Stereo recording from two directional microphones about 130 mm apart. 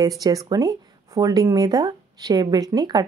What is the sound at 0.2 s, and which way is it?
A woman's voice, 30° right (ahead or behind).